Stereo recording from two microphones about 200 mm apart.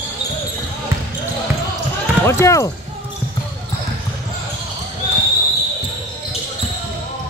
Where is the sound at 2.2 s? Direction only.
15° left (ahead or behind).